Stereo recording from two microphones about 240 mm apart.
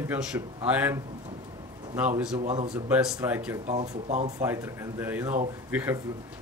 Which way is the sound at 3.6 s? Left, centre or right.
Right.